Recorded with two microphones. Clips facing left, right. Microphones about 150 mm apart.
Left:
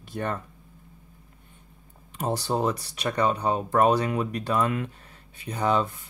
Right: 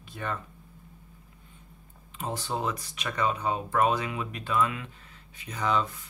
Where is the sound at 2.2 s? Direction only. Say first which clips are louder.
Left 6 dB; 40° left (ahead or behind).